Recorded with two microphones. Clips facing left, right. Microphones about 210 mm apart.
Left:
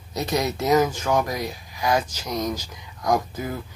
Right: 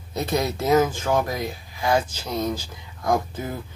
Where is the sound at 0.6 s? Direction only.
25° right (ahead or behind).